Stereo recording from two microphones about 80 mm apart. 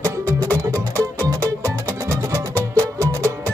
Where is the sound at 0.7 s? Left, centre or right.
Right.